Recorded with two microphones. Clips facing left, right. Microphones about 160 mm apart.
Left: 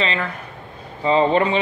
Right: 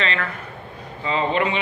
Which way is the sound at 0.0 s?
20° left (ahead or behind).